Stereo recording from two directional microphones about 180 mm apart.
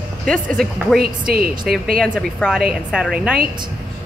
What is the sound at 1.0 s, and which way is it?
A woman's voice, 55° right (ahead or behind).